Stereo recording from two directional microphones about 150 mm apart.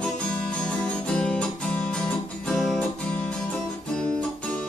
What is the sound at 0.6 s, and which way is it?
Music, 5° left (ahead or behind).